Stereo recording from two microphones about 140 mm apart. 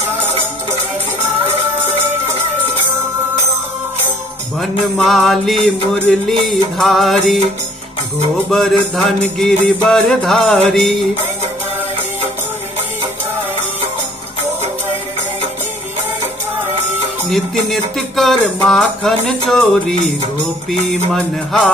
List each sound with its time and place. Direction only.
1.4 s music: 50° right (ahead or behind)
4.6 s music: centre (ahead or behind)
8.5 s music: 5° left (ahead or behind)
17.6 s music: centre (ahead or behind)
21.1 s music: centre (ahead or behind)